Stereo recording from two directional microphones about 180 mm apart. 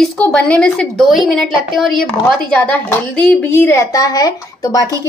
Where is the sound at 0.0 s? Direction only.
5° left (ahead or behind).